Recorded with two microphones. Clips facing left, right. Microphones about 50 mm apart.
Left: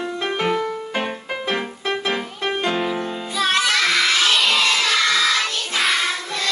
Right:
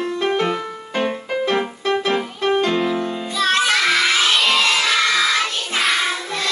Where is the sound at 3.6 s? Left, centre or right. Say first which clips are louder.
Right 1 dB; centre.